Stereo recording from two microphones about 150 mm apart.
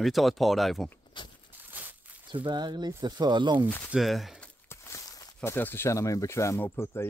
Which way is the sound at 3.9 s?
Centre (ahead or behind).